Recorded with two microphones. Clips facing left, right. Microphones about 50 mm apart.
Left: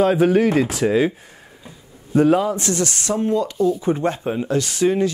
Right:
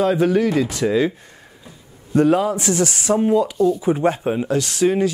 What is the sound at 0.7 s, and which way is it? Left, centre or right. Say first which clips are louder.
Speech: left 1 dB; centre.